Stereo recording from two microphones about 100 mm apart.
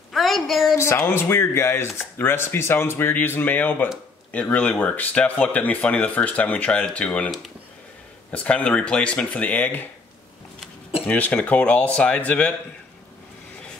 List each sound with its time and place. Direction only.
0.1 s a woman's voice: centre (ahead or behind)
0.7 s speech: 25° left (ahead or behind)
11.1 s speech: 15° left (ahead or behind)